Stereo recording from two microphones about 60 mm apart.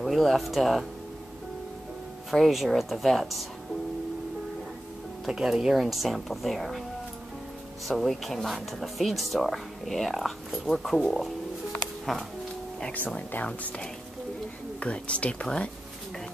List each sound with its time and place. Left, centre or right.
0.0 s speech: centre
2.3 s speech: centre
5.2 s speech: centre
7.9 s speech: centre
13.5 s speech: centre